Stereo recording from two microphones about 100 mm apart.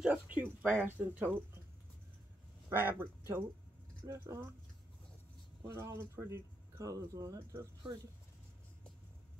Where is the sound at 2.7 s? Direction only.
20° right (ahead or behind).